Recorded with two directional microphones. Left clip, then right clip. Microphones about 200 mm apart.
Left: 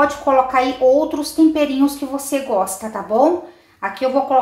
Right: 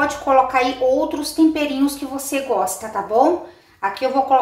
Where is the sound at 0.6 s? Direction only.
25° left (ahead or behind).